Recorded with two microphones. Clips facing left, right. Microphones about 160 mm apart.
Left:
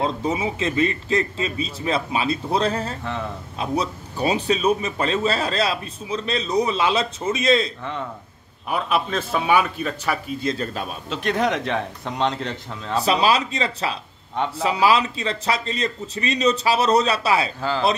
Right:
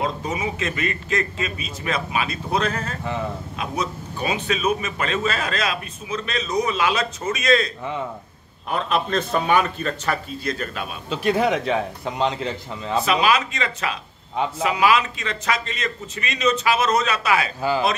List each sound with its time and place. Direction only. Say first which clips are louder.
0.0 s a man's voice: left 2 dB; 30° left (ahead or behind)
8.6 s speech: even; 5° left (ahead or behind)
10.4 s a man's voice: left 2 dB; 25° left (ahead or behind)
11.1 s a man's voice: right 2 dB; 5° right (ahead or behind)
13.0 s a man's voice: left 1 dB; 35° left (ahead or behind)
17.6 s speech: right 2 dB; 10° right (ahead or behind)